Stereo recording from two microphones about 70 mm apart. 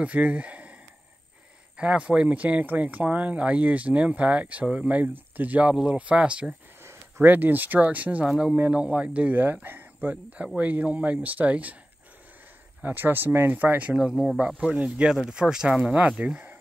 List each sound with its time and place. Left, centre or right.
0.0 s speech: right
1.8 s speech: centre
6.8 s speech: right
12.8 s speech: right